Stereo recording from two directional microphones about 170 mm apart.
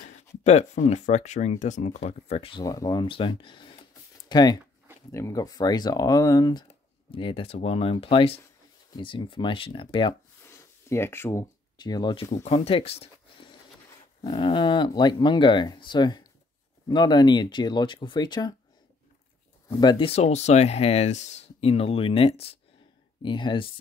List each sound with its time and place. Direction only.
0.4 s speech: 40° left (ahead or behind)
2.6 s speech: 20° left (ahead or behind)
10.4 s a sound: 15° left (ahead or behind)
12.4 s speech: 35° left (ahead or behind)
19.7 s speech: 25° left (ahead or behind)